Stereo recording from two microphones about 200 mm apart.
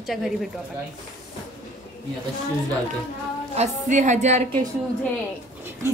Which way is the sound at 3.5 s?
35° right (ahead or behind).